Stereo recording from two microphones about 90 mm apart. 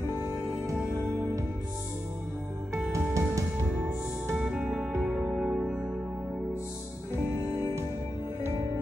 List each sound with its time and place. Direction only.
2.7 s music: 35° right (ahead or behind)
4.4 s music: 10° right (ahead or behind)